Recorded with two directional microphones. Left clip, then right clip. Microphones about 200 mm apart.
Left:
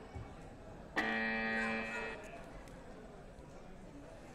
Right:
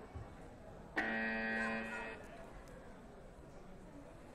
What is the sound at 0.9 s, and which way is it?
Music, 55° left (ahead or behind).